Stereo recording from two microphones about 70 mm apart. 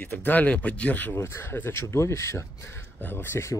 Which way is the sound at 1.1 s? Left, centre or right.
Left.